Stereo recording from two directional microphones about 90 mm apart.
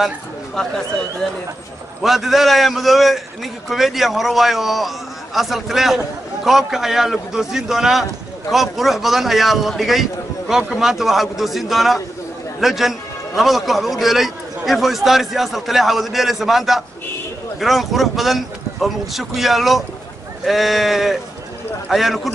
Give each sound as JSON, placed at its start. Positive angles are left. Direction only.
{"t": 0.6, "sound": "speech", "side_deg": 5}
{"t": 2.0, "sound": "a man's voice", "side_deg": 0}